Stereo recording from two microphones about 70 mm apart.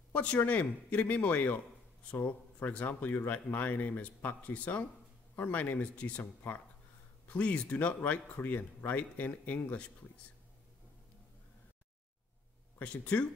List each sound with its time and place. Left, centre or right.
0.1 s a man's voice: centre
12.7 s speech: left